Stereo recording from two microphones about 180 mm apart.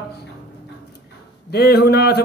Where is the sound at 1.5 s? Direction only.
60° left (ahead or behind).